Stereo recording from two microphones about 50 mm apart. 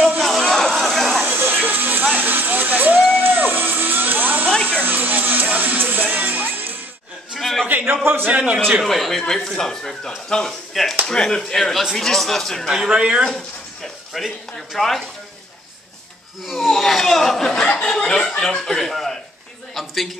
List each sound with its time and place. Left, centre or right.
0.2 s a sound: centre
1.2 s music: right
7.3 s a sound: centre
8.0 s a man's voice: right
8.3 s a man's voice: right
8.8 s speech: centre
12.6 s speech: centre
14.1 s speech: centre
16.4 s a man's voice: centre